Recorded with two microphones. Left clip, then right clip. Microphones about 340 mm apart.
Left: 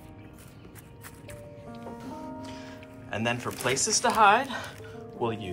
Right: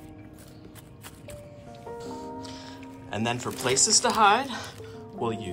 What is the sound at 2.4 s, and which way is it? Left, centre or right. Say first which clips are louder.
Music: right 1 dB; centre.